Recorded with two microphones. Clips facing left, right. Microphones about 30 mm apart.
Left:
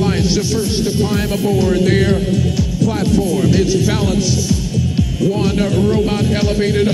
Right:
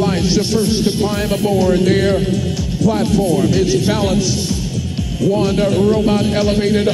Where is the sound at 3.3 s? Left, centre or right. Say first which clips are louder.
Even; centre.